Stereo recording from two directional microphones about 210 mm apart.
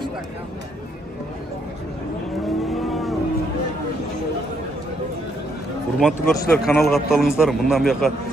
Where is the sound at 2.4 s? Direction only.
Centre (ahead or behind).